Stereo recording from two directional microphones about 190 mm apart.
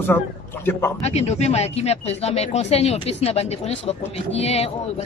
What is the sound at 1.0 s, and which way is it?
Speech, 35° left (ahead or behind).